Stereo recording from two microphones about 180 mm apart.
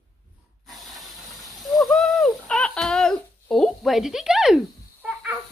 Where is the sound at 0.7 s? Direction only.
Centre (ahead or behind).